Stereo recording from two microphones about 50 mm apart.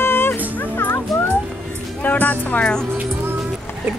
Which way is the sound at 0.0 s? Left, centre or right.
Left.